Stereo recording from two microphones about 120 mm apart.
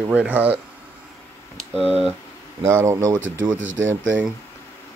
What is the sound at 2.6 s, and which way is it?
Speech, 20° right (ahead or behind).